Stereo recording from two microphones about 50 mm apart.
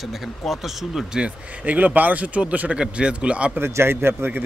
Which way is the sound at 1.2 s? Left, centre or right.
Right.